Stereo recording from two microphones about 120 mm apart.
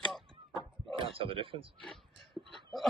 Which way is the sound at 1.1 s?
45° right (ahead or behind).